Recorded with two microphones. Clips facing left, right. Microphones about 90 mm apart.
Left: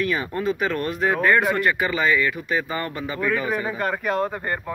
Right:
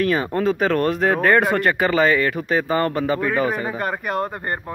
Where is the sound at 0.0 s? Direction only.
45° right (ahead or behind).